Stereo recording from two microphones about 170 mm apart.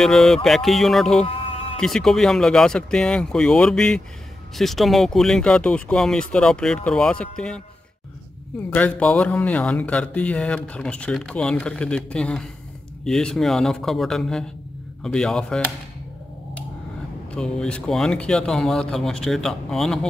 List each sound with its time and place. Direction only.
0.0 s speech: centre (ahead or behind)
1.2 s a sound: 35° left (ahead or behind)
1.8 s speech: centre (ahead or behind)
8.6 s speech: 10° left (ahead or behind)
17.3 s speech: 5° left (ahead or behind)